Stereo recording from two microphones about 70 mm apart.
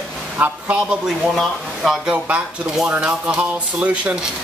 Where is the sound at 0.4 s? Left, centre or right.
Centre.